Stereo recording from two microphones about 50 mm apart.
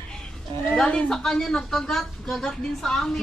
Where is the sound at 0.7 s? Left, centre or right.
Centre.